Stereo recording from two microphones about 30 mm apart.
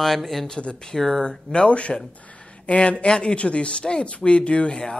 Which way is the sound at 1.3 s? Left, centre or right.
Left.